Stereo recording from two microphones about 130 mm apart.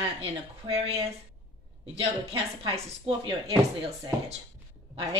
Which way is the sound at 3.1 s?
45° right (ahead or behind).